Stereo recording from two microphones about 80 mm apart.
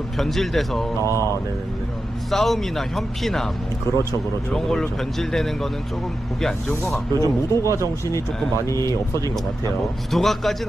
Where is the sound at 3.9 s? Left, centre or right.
Left.